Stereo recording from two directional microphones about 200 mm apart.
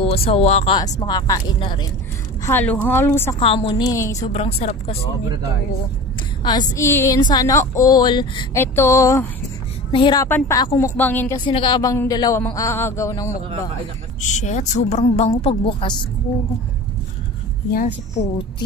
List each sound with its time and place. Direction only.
0.0 s a woman's voice: 30° left (ahead or behind)
1.0 s a woman's voice: 20° left (ahead or behind)
2.4 s speech: 10° left (ahead or behind)
3.3 s a woman's voice: 25° left (ahead or behind)
4.2 s a woman's voice: 30° left (ahead or behind)
6.4 s a woman's voice: 20° left (ahead or behind)
8.5 s a woman's voice: 10° left (ahead or behind)
11.4 s speech: 25° left (ahead or behind)
14.2 s a woman's voice: 35° left (ahead or behind)
17.7 s a woman's voice: 35° left (ahead or behind)